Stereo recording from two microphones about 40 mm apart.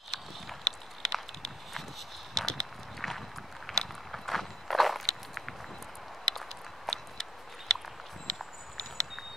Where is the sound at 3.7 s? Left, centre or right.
Centre.